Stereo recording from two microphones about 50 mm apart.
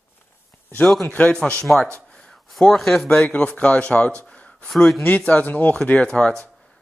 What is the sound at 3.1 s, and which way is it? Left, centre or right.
Speech, left.